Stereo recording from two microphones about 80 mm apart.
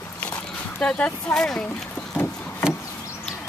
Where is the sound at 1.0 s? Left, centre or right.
Centre.